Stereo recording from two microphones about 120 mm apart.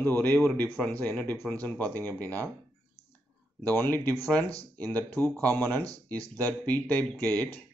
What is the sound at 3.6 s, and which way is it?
Speech, 20° left (ahead or behind).